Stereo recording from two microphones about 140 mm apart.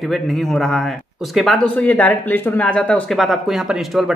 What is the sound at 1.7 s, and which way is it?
Speech, 10° left (ahead or behind).